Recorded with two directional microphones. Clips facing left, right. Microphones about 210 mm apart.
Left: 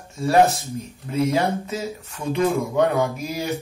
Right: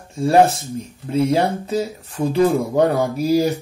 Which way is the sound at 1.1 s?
30° right (ahead or behind).